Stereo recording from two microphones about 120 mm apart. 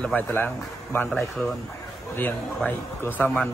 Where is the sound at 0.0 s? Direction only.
15° left (ahead or behind).